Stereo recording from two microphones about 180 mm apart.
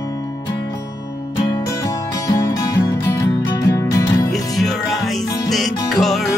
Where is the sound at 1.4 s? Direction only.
20° left (ahead or behind).